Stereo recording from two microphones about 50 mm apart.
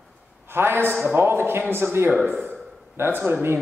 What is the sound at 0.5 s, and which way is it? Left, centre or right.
Speech, right.